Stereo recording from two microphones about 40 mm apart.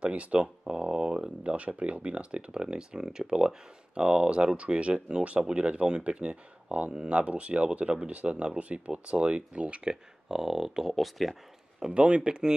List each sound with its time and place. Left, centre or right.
0.0 s speech: right
9.8 s speech: centre
11.0 s speech: centre
11.9 s speech: right